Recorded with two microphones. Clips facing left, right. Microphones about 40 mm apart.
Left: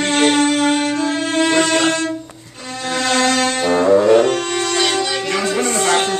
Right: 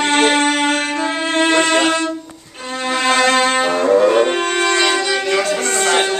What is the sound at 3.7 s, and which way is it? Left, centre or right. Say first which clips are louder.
Brass instrument: left 3 dB; centre.